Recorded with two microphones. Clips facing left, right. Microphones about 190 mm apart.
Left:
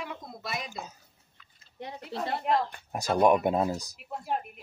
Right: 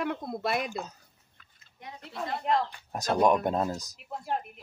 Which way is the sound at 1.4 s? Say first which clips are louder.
Left 1 dB; 50° right (ahead or behind).